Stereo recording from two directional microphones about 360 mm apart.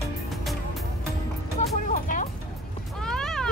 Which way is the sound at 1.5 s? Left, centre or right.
Centre.